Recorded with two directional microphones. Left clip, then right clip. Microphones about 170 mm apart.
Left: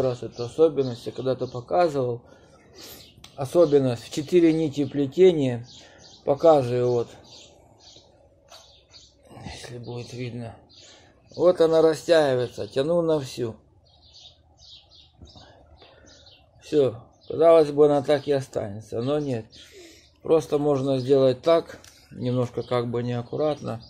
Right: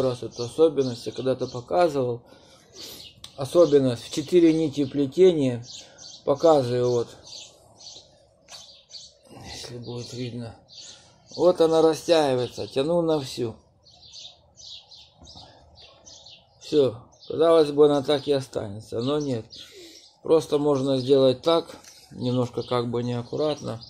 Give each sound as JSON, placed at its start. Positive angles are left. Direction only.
{"t": 0.0, "sound": "speech", "side_deg": -25}
{"t": 9.3, "sound": "speech", "side_deg": -35}
{"t": 16.6, "sound": "speech", "side_deg": -30}